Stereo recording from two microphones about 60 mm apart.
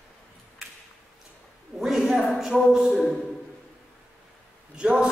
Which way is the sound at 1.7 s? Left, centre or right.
Centre.